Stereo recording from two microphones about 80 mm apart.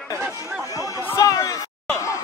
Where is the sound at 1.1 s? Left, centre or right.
Left.